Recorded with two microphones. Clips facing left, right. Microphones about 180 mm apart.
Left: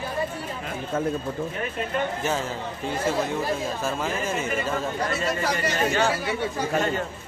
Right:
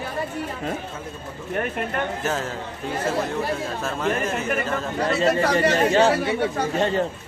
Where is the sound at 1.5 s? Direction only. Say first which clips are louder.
Right 4 dB; 60° right (ahead or behind).